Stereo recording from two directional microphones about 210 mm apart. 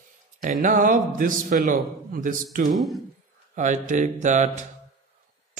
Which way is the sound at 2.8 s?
Centre (ahead or behind).